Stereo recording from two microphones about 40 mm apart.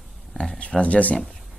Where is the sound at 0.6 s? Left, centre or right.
Left.